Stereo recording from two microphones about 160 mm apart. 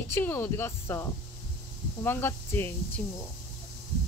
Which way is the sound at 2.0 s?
15° left (ahead or behind).